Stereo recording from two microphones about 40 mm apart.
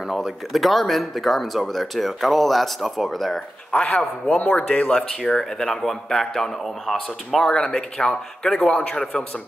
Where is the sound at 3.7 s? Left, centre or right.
Left; by 7.5 s centre.